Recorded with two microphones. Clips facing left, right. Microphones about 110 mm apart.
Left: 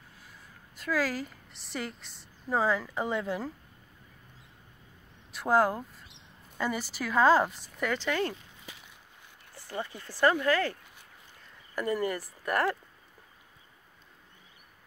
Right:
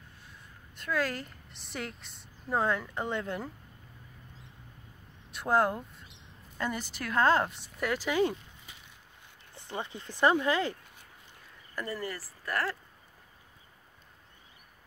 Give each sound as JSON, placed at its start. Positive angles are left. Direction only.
{"t": 0.7, "sound": "a woman's voice", "side_deg": 0}
{"t": 5.3, "sound": "a woman's voice", "side_deg": 0}
{"t": 9.5, "sound": "speech", "side_deg": -20}
{"t": 11.7, "sound": "speech", "side_deg": 15}